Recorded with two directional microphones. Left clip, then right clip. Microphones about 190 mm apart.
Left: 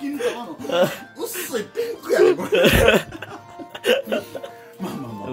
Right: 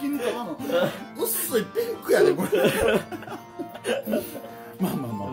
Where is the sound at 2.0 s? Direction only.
50° right (ahead or behind).